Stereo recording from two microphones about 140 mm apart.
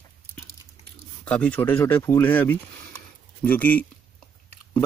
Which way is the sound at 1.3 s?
10° left (ahead or behind).